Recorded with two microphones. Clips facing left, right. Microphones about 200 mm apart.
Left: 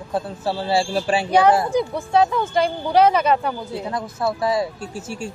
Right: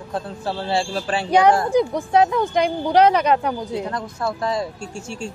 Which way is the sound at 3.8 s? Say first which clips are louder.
Left 2 dB; 5° left (ahead or behind).